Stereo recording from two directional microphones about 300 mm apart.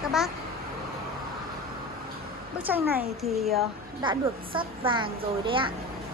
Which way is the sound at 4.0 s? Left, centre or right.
Centre.